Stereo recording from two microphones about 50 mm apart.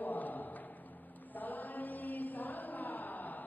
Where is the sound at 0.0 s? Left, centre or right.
Left.